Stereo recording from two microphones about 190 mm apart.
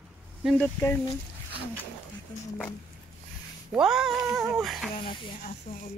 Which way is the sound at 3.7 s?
5° right (ahead or behind).